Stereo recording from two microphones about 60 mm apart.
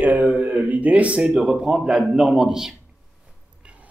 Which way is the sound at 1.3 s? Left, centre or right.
Centre.